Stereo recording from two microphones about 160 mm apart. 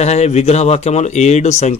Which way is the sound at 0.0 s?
45° left (ahead or behind).